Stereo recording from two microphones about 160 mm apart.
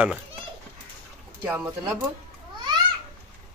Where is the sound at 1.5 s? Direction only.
15° right (ahead or behind).